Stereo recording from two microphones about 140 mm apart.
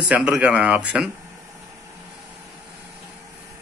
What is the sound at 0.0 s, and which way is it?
A man's voice, 5° right (ahead or behind).